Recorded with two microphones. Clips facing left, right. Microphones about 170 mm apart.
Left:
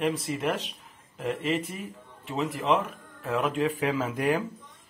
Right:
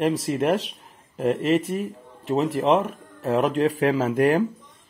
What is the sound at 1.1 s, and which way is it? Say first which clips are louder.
Speech: right 8 dB; 45° right (ahead or behind).